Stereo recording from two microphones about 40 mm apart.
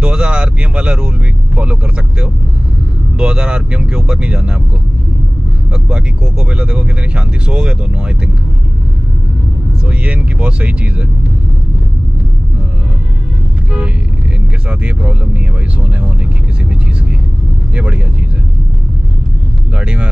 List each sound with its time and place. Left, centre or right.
0.0 s speech: right
5.7 s speech: right
9.8 s speech: right
14.7 s speech: right
17.7 s speech: right